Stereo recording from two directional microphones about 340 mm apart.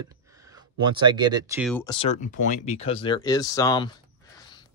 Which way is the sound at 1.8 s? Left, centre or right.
Centre.